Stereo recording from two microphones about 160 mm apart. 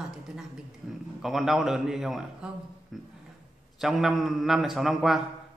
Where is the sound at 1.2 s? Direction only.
Centre (ahead or behind).